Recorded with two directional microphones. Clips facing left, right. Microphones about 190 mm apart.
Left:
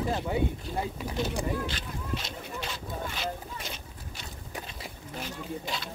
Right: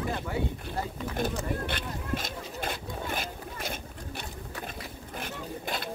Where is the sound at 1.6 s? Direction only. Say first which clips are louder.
Right 2 dB; 55° right (ahead or behind).